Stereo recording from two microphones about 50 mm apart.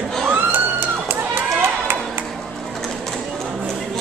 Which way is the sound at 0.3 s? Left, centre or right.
Right.